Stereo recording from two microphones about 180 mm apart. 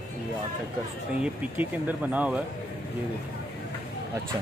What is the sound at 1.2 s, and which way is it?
Speech, 10° right (ahead or behind).